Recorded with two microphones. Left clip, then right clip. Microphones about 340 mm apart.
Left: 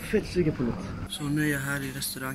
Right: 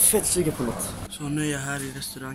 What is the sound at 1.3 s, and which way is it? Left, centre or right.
Speech, centre.